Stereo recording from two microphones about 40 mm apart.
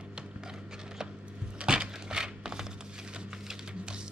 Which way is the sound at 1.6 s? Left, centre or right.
Right.